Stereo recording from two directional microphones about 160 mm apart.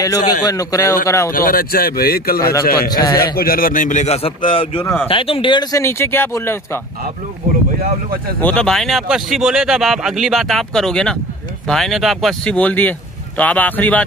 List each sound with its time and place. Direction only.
0.3 s speech: 25° left (ahead or behind)
1.3 s speech: 65° left (ahead or behind)
3.1 s speech: 25° left (ahead or behind)
3.3 s a man's voice: 65° left (ahead or behind); by 6.8 s 15° left (ahead or behind)
7.8 s speech: 65° right (ahead or behind)
8.4 s speech: 10° left (ahead or behind)